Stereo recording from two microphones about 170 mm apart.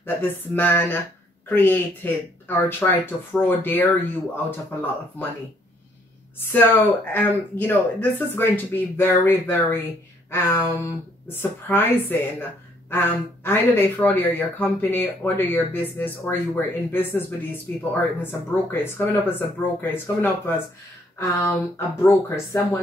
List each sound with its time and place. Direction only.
0.0 s speech: 10° left (ahead or behind)
6.4 s speech: 10° left (ahead or behind)